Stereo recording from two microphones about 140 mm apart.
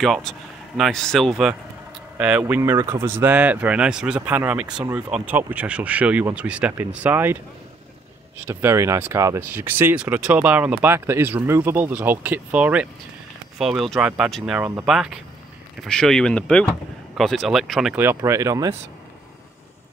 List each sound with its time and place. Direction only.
0.0 s speech: centre (ahead or behind)
2.1 s speech: 10° right (ahead or behind)
8.5 s speech: 15° right (ahead or behind); by 17.9 s centre (ahead or behind)
17.9 s speech: 20° right (ahead or behind)